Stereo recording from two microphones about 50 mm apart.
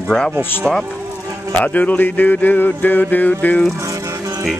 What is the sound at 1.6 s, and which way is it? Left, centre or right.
Music, left.